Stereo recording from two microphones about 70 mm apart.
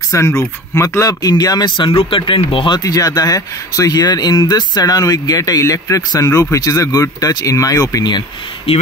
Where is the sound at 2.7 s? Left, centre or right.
Left.